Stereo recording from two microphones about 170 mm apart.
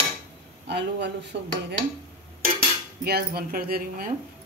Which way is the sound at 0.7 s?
90° right.